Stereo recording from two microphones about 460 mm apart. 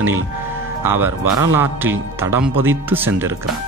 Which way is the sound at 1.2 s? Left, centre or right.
Right.